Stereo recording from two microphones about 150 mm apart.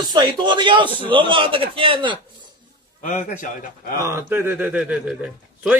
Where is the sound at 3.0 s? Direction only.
60° left (ahead or behind).